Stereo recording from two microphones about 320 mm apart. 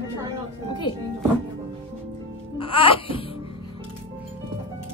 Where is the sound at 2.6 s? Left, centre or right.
Centre.